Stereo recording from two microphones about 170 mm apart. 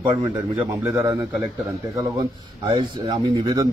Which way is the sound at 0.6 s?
10° right (ahead or behind).